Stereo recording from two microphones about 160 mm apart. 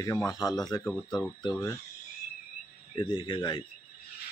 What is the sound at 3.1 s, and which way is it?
Speech, 25° left (ahead or behind).